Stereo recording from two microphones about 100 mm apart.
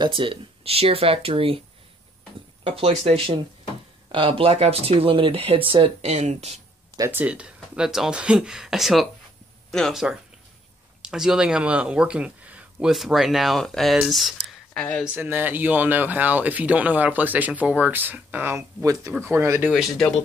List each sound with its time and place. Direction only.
0.0 s speech: 55° right (ahead or behind)
2.6 s speech: 75° right (ahead or behind)
4.1 s speech: 65° right (ahead or behind); by 6.6 s 90° right
7.1 s speech: 15° right (ahead or behind)
12.9 s speech: centre (ahead or behind)
14.0 s a sound: centre (ahead or behind)
14.8 s speech: 10° left (ahead or behind)
15.0 s speech: 20° right (ahead or behind)